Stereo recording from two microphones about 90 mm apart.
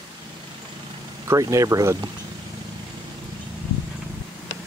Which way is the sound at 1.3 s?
35° right (ahead or behind).